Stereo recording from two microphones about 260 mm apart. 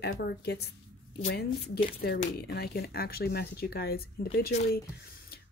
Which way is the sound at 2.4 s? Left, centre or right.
Left.